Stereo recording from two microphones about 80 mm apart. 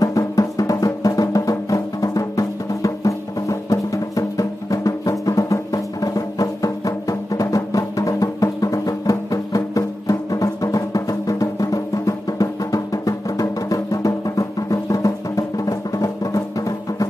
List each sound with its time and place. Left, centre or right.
0.0 s music: left